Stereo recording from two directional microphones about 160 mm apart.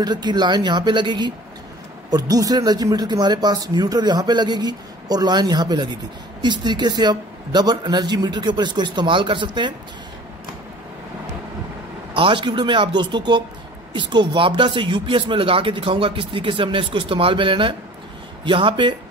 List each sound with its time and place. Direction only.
0.0 s speech: 25° right (ahead or behind)
12.2 s speech: 30° right (ahead or behind)